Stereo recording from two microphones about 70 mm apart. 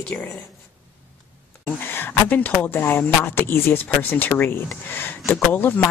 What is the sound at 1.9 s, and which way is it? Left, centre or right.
Speech, left.